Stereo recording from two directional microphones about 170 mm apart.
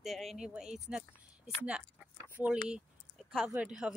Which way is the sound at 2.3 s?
10° right (ahead or behind).